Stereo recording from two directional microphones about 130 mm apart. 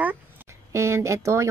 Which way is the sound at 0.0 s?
15° right (ahead or behind).